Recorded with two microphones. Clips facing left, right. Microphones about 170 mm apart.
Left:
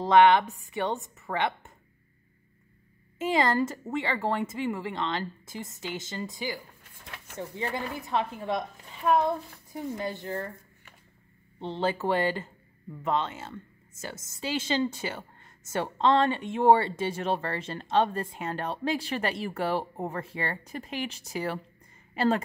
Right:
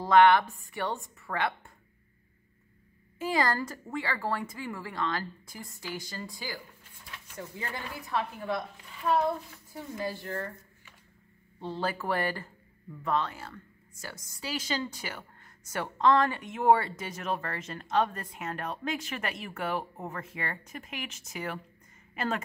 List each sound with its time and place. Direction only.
0.0 s a woman's voice: 20° left (ahead or behind)
3.2 s a woman's voice: 25° left (ahead or behind)
9.7 s a woman's voice: 20° left (ahead or behind)
11.6 s a woman's voice: 20° left (ahead or behind)